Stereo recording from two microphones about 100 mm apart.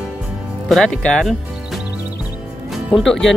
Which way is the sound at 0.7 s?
5° left (ahead or behind).